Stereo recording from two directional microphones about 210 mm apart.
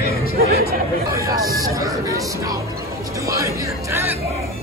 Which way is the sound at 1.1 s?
15° right (ahead or behind).